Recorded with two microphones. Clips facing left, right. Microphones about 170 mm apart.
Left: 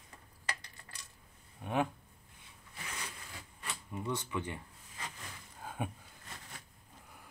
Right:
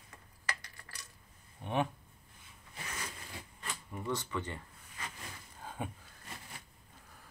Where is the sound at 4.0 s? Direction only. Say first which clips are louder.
Even; 15° left (ahead or behind).